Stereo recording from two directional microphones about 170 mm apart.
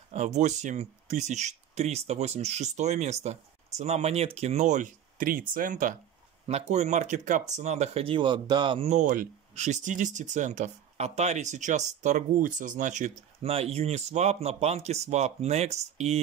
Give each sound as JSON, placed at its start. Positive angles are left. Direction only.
{"t": 0.1, "sound": "speech", "side_deg": -40}
{"t": 6.4, "sound": "speech", "side_deg": -40}